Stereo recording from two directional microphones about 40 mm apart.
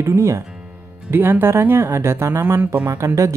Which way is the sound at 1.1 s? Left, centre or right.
Right.